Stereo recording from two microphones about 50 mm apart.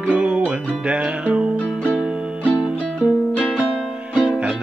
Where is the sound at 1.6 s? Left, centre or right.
Left.